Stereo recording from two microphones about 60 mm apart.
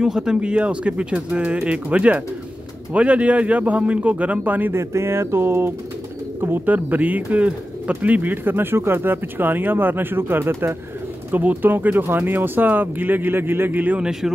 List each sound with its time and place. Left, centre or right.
0.0 s speech: centre; by 4.7 s right
4.7 s speech: right
6.7 s speech: right
11.3 s speech: right